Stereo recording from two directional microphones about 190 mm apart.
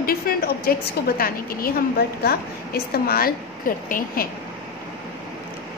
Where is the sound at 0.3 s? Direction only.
50° left (ahead or behind).